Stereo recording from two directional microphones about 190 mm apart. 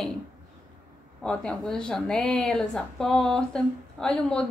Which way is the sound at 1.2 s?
5° left (ahead or behind).